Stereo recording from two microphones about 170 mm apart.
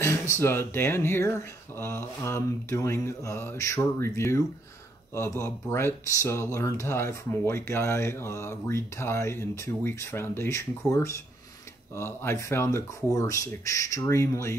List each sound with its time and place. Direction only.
0.0 s speech: 15° left (ahead or behind)